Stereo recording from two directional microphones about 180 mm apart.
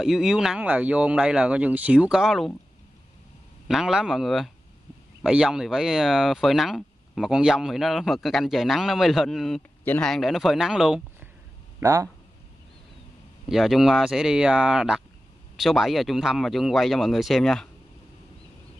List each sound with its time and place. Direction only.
0.0 s speech: centre (ahead or behind)
3.6 s speech: centre (ahead or behind)
11.8 s speech: 15° right (ahead or behind)
13.5 s speech: centre (ahead or behind)